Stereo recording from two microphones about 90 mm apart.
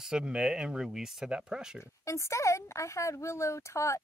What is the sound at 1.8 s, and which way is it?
Speech, 35° left (ahead or behind).